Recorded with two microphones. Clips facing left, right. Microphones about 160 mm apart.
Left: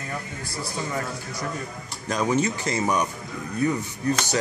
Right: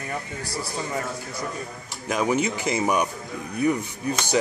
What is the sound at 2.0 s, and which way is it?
Speech, 10° right (ahead or behind).